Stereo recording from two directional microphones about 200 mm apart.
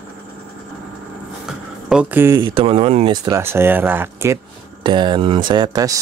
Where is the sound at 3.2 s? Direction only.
15° right (ahead or behind).